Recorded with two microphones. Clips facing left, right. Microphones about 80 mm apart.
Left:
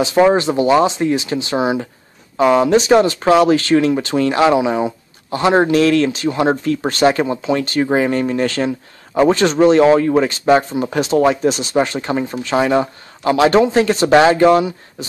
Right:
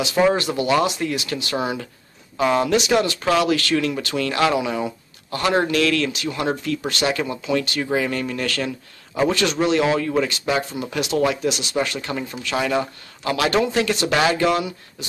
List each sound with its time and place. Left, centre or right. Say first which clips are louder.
0.0 s speech: left 6 dB; left
2.7 s speech: left 7 dB; left